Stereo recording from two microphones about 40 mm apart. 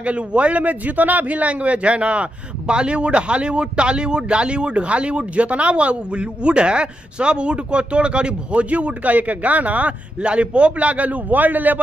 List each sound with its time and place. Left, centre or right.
0.0 s a man's voice: right